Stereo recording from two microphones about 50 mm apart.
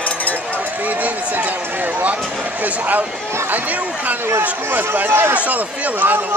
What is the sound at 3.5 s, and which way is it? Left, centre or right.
Speech, right.